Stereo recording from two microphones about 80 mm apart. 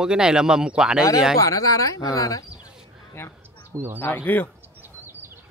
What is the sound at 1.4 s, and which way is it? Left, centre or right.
Speech, left.